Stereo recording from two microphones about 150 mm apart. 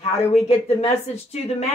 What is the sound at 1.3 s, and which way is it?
Speech, 45° left (ahead or behind).